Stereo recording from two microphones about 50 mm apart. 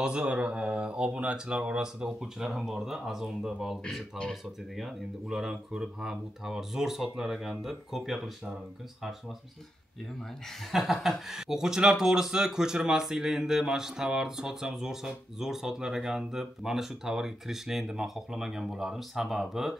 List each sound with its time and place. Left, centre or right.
0.0 s speech: centre
10.7 s speech: centre
11.3 s speech: centre